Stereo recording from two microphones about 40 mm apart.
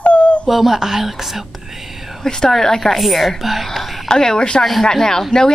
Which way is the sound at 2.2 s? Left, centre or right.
Centre.